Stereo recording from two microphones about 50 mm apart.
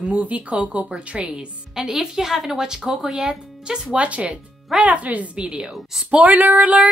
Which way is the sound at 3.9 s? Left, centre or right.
Right.